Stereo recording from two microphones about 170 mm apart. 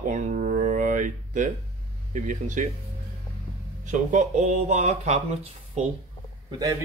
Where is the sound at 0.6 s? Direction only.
50° right (ahead or behind).